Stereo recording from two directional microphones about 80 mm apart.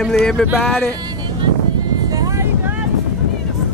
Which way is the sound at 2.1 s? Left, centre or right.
Right.